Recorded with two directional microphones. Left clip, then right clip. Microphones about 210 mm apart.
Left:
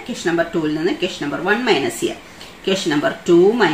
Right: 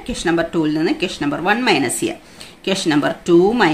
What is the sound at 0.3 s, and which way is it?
Speech, 50° right (ahead or behind).